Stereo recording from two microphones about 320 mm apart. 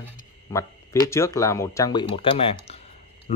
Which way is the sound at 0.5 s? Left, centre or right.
Centre.